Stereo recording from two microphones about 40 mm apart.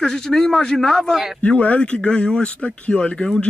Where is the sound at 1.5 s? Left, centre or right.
Left.